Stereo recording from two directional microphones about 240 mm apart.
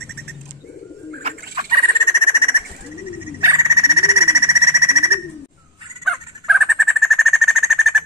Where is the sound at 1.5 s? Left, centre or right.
Right.